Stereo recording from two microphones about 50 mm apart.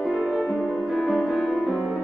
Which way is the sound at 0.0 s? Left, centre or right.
Centre.